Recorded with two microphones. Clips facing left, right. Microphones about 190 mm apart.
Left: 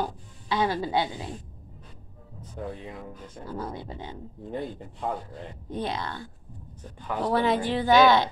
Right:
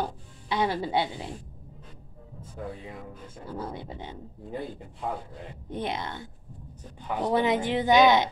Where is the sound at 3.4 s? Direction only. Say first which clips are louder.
Left 1 dB; 25° right (ahead or behind).